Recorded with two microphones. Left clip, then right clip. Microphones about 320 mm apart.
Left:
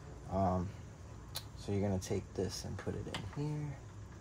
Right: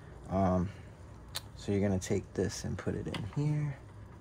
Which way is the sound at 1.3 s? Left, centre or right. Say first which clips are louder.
Right 6 dB; right.